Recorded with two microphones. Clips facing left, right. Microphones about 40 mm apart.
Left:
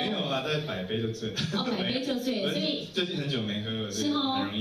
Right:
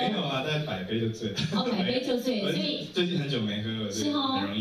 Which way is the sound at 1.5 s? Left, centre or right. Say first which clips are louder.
Right 3 dB; right.